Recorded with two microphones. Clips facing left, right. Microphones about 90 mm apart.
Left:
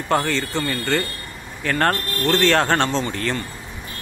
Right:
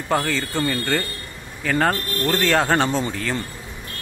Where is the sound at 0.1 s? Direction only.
Centre (ahead or behind).